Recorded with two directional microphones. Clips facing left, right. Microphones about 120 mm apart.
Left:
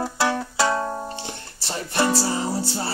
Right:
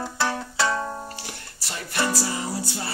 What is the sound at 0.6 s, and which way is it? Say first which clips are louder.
Music: left 3 dB; 20° left (ahead or behind).